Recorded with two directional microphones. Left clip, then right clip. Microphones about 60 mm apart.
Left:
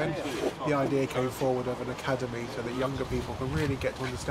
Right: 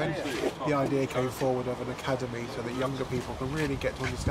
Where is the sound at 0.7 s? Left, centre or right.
Centre.